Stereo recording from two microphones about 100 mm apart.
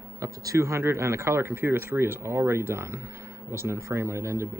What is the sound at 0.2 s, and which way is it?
Speech, 30° right (ahead or behind).